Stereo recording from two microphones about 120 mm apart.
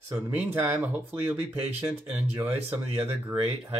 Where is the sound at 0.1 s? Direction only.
20° right (ahead or behind).